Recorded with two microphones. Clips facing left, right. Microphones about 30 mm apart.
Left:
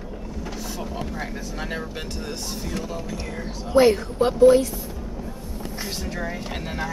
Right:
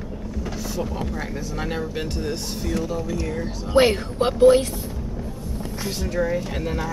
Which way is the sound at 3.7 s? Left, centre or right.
Right.